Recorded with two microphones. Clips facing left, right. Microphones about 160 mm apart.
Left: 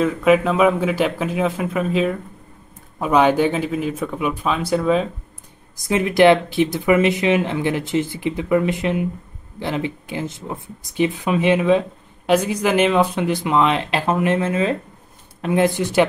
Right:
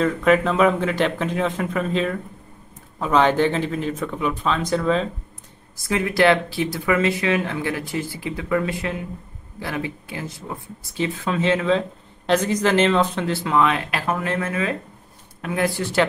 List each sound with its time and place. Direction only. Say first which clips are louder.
0.0 s speech: left 2 dB; 5° left (ahead or behind)
5.8 s speech: left 4 dB; 20° left (ahead or behind)